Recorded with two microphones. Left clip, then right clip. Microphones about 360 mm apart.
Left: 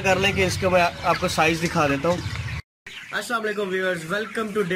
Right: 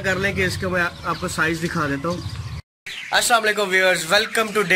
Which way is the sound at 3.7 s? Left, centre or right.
Right.